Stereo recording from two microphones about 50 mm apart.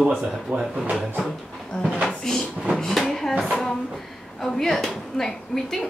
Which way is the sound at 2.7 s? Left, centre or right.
Centre.